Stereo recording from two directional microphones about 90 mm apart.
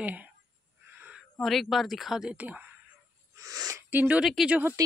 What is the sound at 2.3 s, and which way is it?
Speech, 15° right (ahead or behind).